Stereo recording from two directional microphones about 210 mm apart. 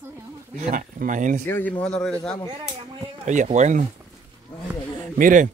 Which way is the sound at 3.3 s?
35° right (ahead or behind).